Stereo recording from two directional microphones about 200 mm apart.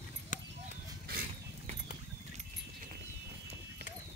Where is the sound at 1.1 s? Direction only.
45° right (ahead or behind).